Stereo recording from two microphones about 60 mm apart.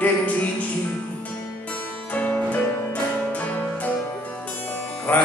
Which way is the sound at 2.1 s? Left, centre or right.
Left.